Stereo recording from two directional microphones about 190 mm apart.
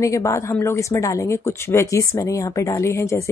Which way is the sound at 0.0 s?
15° left (ahead or behind).